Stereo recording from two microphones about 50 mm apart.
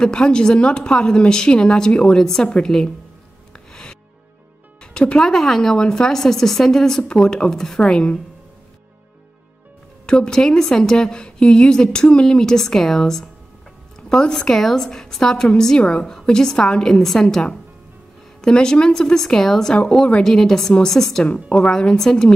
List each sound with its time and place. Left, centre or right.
0.0 s a woman's voice: centre
3.5 s music: centre
4.9 s a woman's voice: centre
10.0 s a woman's voice: centre
21.3 s a woman's voice: left